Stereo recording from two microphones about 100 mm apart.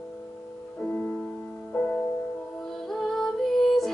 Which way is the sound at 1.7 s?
15° left (ahead or behind).